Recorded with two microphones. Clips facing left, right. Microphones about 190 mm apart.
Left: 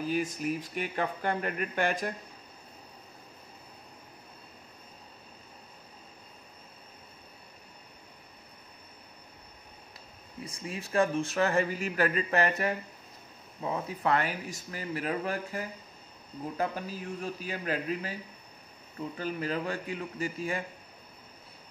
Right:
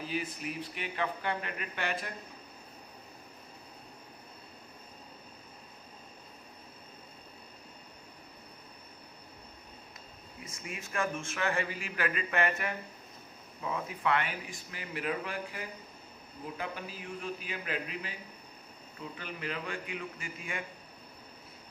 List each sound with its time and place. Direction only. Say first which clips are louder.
0.0 s speech: left 6 dB; 45° left (ahead or behind)
10.4 s speech: left 5 dB; 30° left (ahead or behind)
19.1 s speech: left 7 dB; 40° left (ahead or behind)